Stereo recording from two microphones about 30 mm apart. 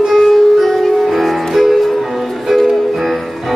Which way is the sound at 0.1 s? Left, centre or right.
Centre.